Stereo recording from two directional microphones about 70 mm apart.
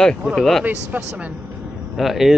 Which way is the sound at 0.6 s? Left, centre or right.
Right.